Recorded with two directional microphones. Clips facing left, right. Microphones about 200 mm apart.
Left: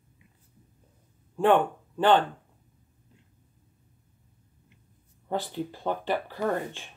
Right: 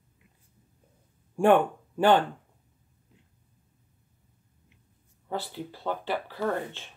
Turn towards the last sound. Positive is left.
turn(degrees=15)  # may be behind; listen again after turning